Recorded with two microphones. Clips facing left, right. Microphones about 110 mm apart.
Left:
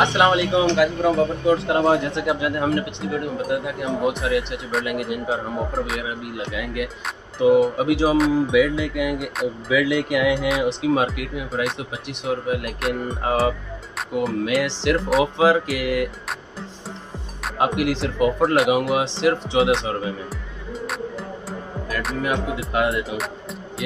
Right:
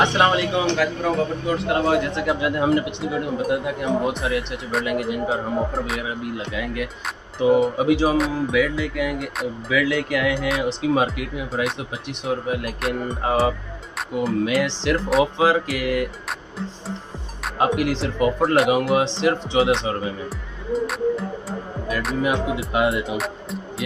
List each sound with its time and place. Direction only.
0.0 s speech: 10° left (ahead or behind)
1.5 s a man's voice: 25° left (ahead or behind)
2.2 s speech: centre (ahead or behind)
10.9 s speech: centre (ahead or behind)
17.6 s speech: 5° left (ahead or behind)
20.7 s music: centre (ahead or behind)